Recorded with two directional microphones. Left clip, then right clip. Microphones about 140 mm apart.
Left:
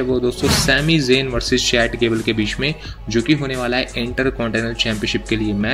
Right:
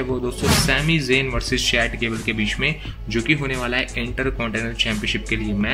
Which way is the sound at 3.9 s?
35° left (ahead or behind).